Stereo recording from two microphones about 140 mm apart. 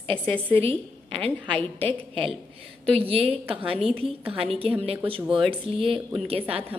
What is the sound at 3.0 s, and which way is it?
A woman's voice, 45° right (ahead or behind).